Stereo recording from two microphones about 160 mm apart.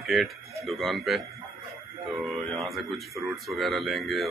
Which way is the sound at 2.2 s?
Centre (ahead or behind).